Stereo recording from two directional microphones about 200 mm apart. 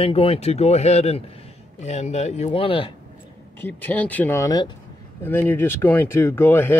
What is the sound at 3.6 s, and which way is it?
Speech, 10° left (ahead or behind).